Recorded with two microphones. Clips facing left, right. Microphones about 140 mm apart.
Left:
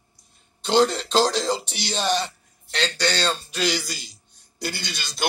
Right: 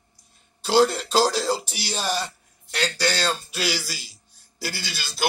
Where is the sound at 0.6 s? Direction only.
5° right (ahead or behind).